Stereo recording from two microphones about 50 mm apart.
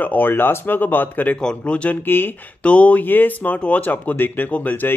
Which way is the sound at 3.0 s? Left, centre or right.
Left.